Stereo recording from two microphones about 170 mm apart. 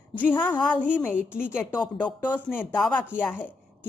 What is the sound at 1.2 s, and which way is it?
Speech, 5° right (ahead or behind).